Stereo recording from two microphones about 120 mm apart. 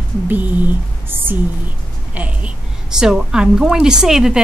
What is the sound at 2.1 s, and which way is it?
Babbling, 10° right (ahead or behind).